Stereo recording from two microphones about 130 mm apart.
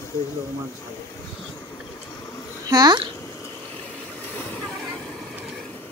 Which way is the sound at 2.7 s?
30° right (ahead or behind).